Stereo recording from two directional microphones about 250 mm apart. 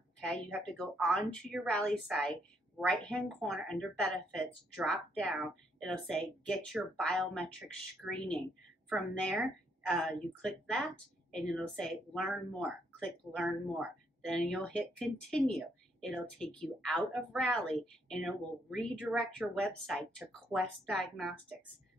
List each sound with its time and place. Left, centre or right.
0.3 s speech: centre